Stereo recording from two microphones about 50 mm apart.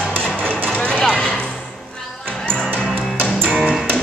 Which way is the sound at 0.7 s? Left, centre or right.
Centre.